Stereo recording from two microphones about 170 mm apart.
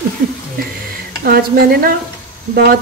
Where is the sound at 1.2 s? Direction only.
60° right (ahead or behind).